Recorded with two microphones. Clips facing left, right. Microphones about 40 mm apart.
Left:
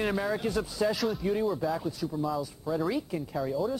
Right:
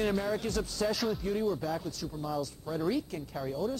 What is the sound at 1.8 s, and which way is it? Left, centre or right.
Speech, centre.